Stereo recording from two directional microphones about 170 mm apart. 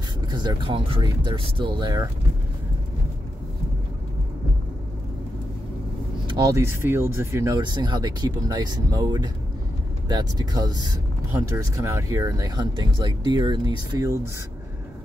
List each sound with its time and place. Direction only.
0.3 s speech: 25° right (ahead or behind)
6.2 s speech: 20° right (ahead or behind)